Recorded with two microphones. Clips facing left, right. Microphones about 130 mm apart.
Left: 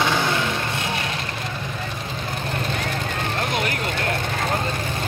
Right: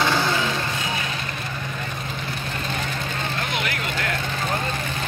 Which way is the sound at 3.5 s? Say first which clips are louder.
Left 3 dB; 40° left (ahead or behind).